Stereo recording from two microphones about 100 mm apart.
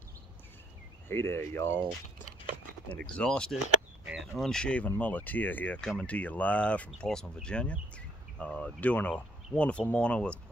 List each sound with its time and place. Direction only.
1.0 s speech: 25° left (ahead or behind)
2.9 s speech: 10° left (ahead or behind)